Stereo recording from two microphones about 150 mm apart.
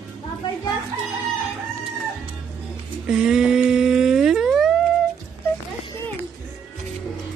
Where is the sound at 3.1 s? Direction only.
5° right (ahead or behind).